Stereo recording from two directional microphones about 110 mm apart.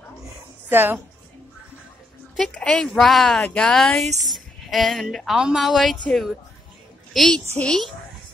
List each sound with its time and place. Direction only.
0.7 s speech: 20° right (ahead or behind)
2.3 s a child's voice: 5° left (ahead or behind)